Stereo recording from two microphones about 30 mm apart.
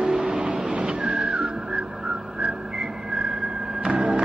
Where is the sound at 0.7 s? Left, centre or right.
Right.